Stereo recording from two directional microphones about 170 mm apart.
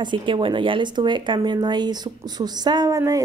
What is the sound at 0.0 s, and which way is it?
Speech, 30° right (ahead or behind).